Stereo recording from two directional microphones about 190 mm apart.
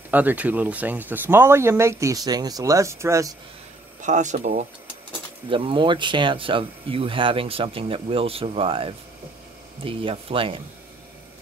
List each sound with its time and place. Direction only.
0.1 s speech: 10° right (ahead or behind)
4.0 s speech: 40° right (ahead or behind)
5.5 s speech: 25° right (ahead or behind)